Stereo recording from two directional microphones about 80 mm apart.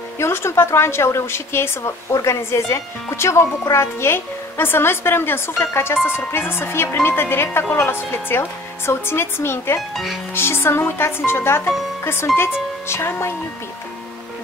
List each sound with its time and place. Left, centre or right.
0.2 s speech: left
9.8 s speech: centre
10.3 s speech: left